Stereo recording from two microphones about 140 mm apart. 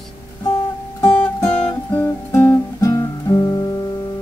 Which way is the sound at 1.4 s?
20° left (ahead or behind).